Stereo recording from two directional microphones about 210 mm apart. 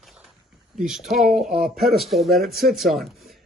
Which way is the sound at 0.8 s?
Centre (ahead or behind).